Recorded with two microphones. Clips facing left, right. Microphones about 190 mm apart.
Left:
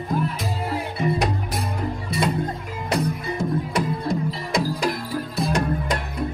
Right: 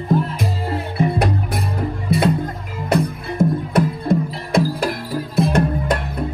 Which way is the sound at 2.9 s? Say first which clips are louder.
Right 4 dB; 55° right (ahead or behind).